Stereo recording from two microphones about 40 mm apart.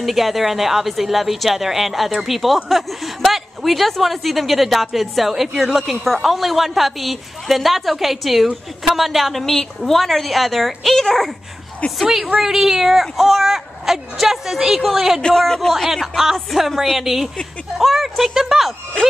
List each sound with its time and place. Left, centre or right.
0.0 s speech: centre
12.0 s a woman's voice: centre
15.3 s a man's voice: centre
15.7 s speech: centre
19.0 s speech: left